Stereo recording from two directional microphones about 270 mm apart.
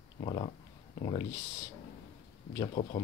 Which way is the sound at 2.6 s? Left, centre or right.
Left.